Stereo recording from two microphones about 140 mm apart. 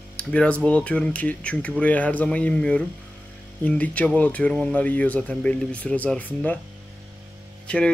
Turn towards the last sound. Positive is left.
turn(degrees=10)  # may be behind; listen again after turning